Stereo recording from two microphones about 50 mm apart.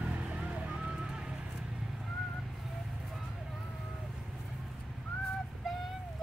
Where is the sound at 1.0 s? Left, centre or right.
Centre.